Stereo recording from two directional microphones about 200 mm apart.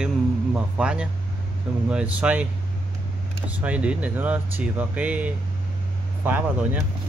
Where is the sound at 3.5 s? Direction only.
5° right (ahead or behind).